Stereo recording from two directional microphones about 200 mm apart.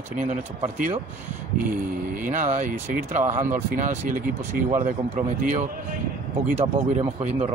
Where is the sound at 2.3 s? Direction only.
40° right (ahead or behind).